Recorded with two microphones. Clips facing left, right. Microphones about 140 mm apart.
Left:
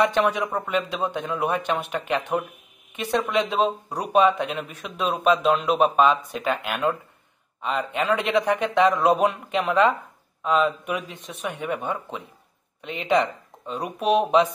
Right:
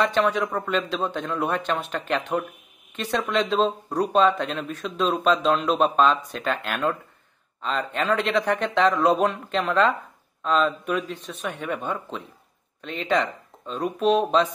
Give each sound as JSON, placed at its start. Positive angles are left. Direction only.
{"t": 0.0, "sound": "speech", "side_deg": 15}